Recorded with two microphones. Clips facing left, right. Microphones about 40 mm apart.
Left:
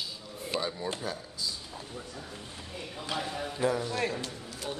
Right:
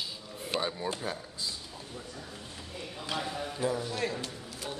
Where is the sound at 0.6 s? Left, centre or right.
Right.